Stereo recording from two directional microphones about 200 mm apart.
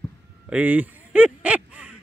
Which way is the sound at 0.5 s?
5° right (ahead or behind).